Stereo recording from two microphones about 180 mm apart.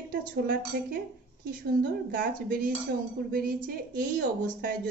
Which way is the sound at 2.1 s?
50° right (ahead or behind).